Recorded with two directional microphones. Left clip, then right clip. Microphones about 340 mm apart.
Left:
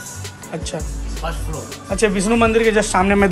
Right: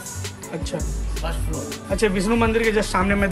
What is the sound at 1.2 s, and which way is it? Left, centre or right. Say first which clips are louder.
Speech: left 3 dB; centre.